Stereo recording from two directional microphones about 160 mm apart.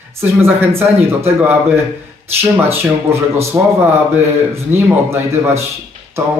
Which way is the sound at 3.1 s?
15° right (ahead or behind).